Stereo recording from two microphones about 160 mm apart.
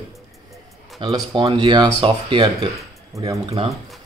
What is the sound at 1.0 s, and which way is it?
Speech, 25° right (ahead or behind).